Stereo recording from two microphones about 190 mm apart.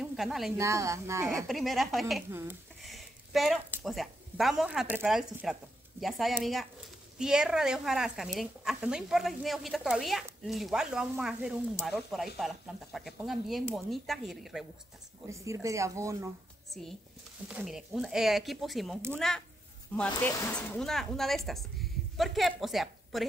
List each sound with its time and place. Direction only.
0.0 s a sound: centre (ahead or behind)
0.6 s speech: 15° right (ahead or behind)
1.2 s a woman's voice: centre (ahead or behind)
15.2 s speech: 15° right (ahead or behind)
17.5 s a woman's voice: 5° right (ahead or behind)